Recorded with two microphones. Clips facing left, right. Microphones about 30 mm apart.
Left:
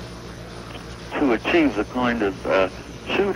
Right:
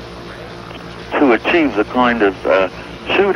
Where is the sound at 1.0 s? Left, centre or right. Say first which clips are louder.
Right 8 dB; right.